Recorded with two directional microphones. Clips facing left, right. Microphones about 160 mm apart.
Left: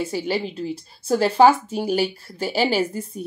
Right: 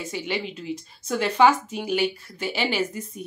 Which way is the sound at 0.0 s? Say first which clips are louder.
Left 5 dB; 35° left (ahead or behind).